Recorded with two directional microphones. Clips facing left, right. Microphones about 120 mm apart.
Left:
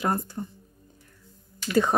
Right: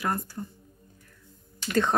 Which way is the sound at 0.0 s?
25° left (ahead or behind).